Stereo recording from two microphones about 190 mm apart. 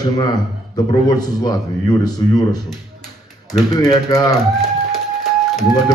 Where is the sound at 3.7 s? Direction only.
20° left (ahead or behind).